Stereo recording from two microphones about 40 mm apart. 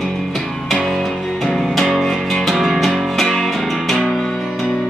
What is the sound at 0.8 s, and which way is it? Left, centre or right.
Music, centre.